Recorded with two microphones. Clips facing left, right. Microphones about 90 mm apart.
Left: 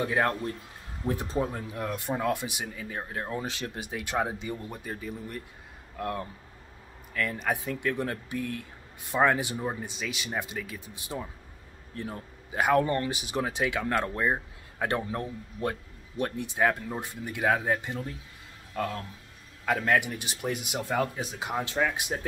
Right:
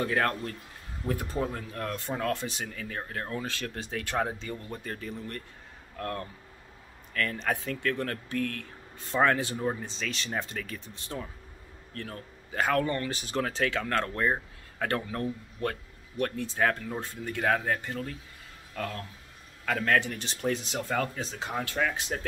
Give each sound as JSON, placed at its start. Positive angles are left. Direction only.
{"t": 0.0, "sound": "speech", "side_deg": 15}